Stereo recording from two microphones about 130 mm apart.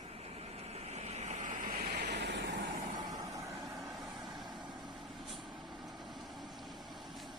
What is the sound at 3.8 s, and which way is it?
Vehicle, centre (ahead or behind).